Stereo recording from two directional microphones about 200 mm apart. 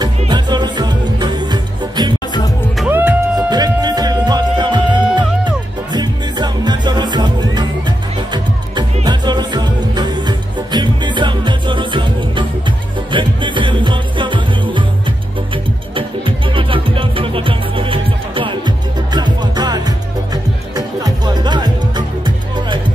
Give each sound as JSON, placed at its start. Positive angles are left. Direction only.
{"t": 0.0, "sound": "music", "side_deg": -20}
{"t": 2.8, "sound": "music", "side_deg": -10}